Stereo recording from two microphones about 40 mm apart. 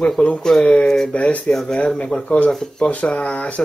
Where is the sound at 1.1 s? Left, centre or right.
Left.